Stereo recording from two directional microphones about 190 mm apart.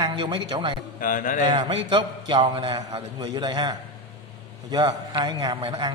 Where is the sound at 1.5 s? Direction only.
25° right (ahead or behind).